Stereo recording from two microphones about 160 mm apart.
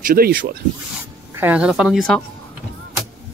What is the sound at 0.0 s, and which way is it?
Speech, 65° right (ahead or behind).